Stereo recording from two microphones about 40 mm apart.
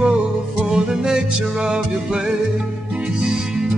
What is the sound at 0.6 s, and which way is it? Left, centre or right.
Music, centre.